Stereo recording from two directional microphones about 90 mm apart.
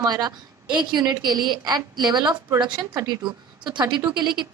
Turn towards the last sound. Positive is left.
turn(degrees=-55)  # may be behind; listen again after turning